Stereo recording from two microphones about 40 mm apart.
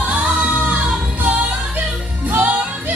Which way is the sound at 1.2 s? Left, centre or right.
Right.